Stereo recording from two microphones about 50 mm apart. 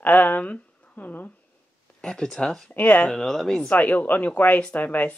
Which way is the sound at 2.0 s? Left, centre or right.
Centre.